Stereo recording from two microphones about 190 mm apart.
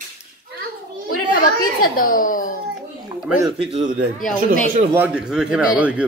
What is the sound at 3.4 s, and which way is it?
Speech, 30° right (ahead or behind).